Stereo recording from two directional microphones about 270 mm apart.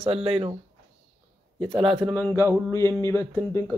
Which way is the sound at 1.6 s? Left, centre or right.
Centre.